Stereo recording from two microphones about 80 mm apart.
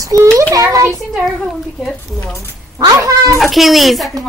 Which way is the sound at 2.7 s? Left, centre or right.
Right.